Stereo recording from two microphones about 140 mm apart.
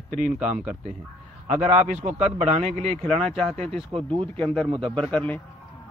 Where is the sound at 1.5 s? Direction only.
55° right (ahead or behind).